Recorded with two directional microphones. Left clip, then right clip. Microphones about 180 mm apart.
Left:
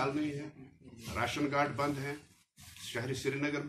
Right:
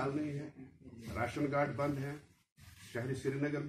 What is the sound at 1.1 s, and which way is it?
A man's voice, 30° left (ahead or behind).